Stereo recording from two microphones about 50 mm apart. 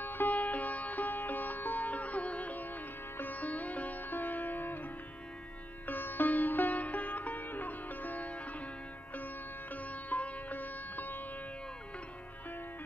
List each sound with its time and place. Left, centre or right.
0.0 s music: left